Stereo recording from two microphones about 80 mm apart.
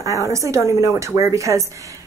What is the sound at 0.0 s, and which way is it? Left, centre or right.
Speech, right.